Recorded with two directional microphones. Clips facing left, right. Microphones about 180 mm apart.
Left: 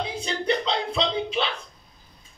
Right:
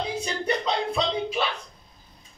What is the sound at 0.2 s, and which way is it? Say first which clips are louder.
Music: left 2 dB; 45° right (ahead or behind).